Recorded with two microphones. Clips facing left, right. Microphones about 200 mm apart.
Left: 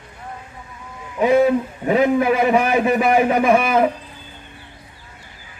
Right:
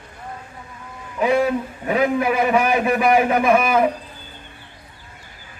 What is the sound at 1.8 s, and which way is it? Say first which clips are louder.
A man's voice: left 3 dB; 25° left (ahead or behind).